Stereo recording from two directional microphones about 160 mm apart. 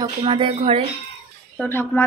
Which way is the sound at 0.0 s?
30° right (ahead or behind).